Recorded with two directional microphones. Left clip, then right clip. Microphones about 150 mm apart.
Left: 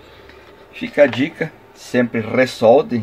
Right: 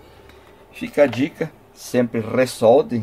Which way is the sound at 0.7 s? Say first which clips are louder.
Left 3 dB; 10° right (ahead or behind).